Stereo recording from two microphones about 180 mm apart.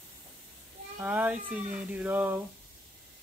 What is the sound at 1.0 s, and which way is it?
Speech, 10° right (ahead or behind).